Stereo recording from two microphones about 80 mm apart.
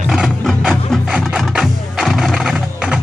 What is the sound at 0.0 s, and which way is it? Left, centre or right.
Music, centre.